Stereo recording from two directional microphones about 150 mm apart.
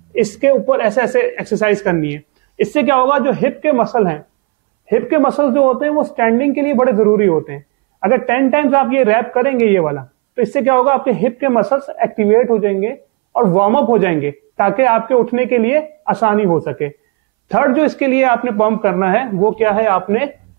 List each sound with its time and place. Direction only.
0.1 s speech: 15° right (ahead or behind)